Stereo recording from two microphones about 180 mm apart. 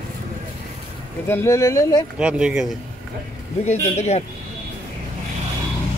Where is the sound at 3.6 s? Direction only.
40° left (ahead or behind).